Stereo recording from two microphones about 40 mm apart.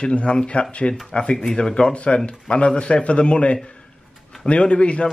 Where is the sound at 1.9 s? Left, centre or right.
Left.